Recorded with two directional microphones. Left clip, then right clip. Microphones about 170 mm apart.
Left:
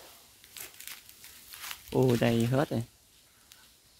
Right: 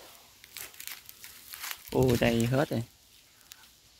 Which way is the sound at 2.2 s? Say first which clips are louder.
Right 1 dB; 10° left (ahead or behind).